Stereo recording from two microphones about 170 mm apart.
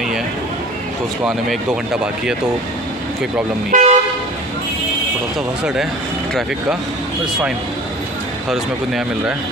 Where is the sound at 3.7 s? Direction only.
50° right (ahead or behind).